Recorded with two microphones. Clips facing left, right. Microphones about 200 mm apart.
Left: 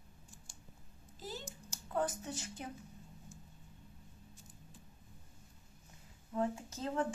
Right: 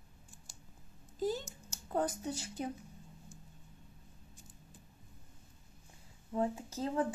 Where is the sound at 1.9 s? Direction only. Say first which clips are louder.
Right 2 dB; 35° right (ahead or behind).